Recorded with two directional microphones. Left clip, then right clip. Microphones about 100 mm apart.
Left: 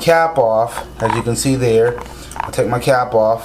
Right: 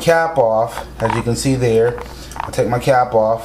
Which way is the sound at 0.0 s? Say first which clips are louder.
Left 1 dB; 20° left (ahead or behind).